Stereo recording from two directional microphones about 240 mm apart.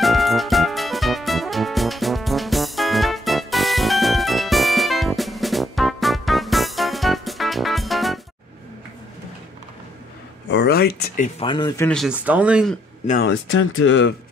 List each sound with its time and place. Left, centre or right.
0.0 s music: centre
10.5 s a sound: left
11.3 s speech: centre
13.2 s speech: left